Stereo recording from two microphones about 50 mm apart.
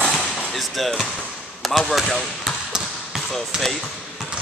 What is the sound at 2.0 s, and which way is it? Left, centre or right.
Speech, centre.